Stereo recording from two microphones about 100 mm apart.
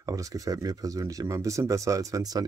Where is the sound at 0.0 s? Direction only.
35° right (ahead or behind).